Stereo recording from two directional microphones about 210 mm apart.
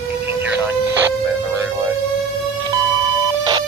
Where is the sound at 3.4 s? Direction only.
20° right (ahead or behind).